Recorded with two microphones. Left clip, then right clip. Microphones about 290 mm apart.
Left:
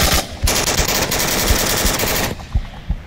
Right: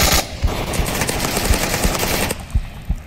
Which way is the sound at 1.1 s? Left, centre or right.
Centre.